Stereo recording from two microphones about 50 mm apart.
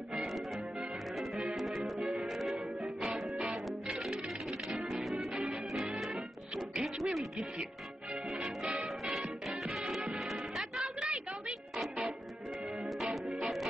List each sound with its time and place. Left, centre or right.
0.1 s music: centre
1.6 s music: centre
2.0 s music: centre
2.2 s music: centre
2.8 s music: centre
6.1 s music: centre
8.4 s music: centre
9.1 s music: centre
11.0 s a sound: centre
12.8 s music: centre